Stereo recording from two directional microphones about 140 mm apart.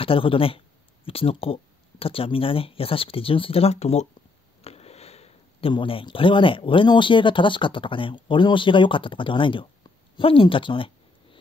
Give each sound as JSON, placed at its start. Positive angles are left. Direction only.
{"t": 0.0, "sound": "speech", "side_deg": 40}